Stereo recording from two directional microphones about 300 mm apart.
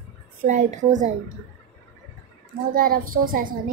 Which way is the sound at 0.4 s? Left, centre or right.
Right.